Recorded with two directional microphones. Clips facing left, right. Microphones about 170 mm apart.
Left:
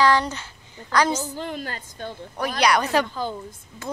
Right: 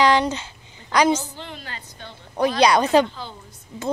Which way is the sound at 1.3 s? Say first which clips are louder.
Left 6 dB; 45° left (ahead or behind).